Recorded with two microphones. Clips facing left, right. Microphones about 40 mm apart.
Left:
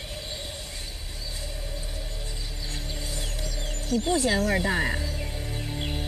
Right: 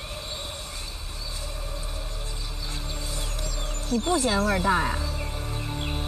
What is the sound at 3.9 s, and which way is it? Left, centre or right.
Speech, right.